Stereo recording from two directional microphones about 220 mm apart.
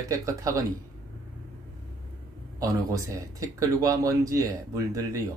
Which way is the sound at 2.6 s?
15° right (ahead or behind).